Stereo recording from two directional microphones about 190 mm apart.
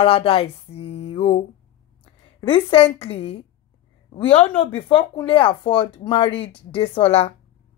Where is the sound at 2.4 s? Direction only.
30° left (ahead or behind).